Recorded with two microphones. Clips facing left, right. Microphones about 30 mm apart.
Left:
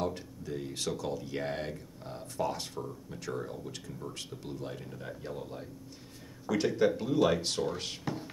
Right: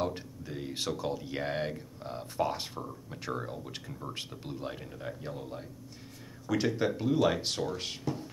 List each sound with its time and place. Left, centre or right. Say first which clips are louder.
0.0 s speech: right 1 dB; centre